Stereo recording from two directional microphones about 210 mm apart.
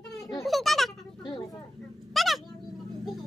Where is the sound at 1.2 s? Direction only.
20° left (ahead or behind).